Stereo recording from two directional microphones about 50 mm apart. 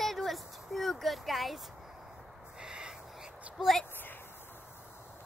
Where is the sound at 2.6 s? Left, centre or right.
Centre.